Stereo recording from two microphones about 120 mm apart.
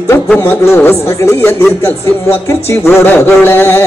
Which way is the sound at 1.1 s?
20° left (ahead or behind).